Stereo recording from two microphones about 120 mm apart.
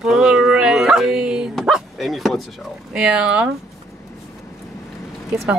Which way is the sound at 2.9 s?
10° right (ahead or behind).